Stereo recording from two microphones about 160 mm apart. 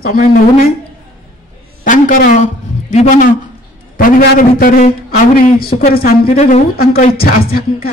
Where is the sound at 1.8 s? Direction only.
60° left (ahead or behind).